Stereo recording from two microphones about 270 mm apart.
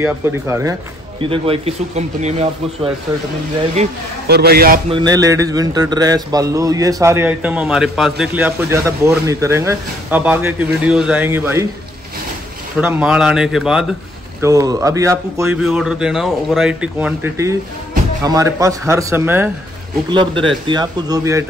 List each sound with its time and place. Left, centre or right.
0.0 s a man's voice: centre
1.2 s a man's voice: centre; by 4.7 s right
4.9 s a man's voice: centre
12.7 s speech: centre
14.4 s a man's voice: centre